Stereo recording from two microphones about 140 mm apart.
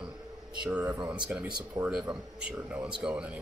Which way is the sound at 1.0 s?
5° right (ahead or behind).